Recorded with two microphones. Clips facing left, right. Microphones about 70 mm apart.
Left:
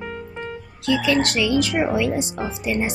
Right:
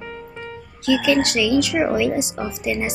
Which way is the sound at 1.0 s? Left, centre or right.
Centre.